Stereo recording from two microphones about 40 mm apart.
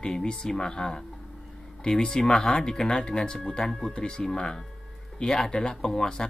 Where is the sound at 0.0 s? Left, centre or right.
Centre.